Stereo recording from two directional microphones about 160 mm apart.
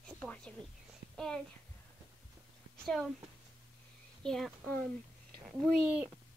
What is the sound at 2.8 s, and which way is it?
Speech, centre (ahead or behind).